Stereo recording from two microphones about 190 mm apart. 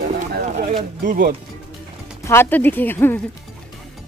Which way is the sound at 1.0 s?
45° right (ahead or behind).